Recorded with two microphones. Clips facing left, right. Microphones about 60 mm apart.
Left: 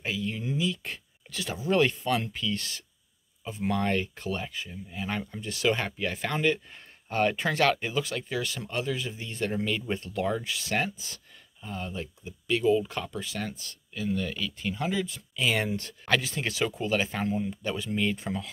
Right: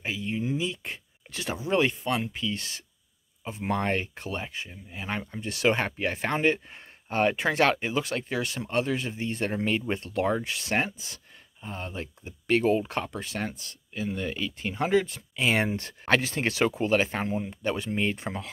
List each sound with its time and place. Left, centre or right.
0.0 s a sound: centre
3.4 s speech: right
5.4 s speech: right
18.1 s speech: right